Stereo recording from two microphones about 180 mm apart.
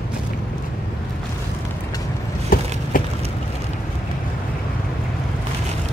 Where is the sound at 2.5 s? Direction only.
50° left (ahead or behind).